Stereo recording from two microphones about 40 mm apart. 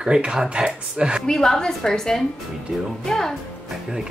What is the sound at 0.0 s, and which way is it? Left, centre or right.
Speech, right.